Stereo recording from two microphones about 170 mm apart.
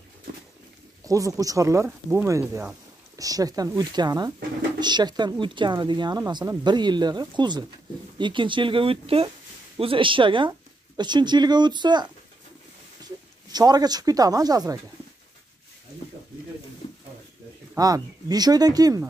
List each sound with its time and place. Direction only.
1.0 s speech: 20° right (ahead or behind)
17.7 s speech: 20° right (ahead or behind)